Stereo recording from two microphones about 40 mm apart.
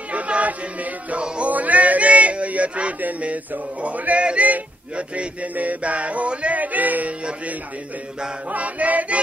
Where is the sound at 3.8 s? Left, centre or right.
Right.